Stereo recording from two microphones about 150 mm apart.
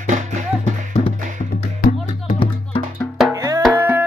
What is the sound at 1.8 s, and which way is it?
Music, 70° left (ahead or behind).